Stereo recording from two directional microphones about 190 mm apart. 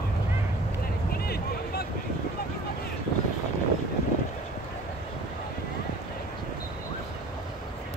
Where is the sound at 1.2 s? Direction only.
55° left (ahead or behind).